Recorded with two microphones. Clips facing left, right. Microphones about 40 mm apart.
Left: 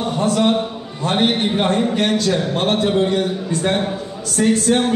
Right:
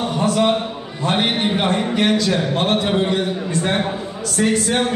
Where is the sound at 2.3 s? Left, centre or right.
Right.